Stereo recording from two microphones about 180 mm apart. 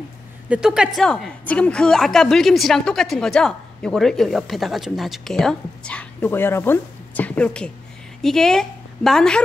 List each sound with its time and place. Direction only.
0.5 s a woman's voice: 5° right (ahead or behind)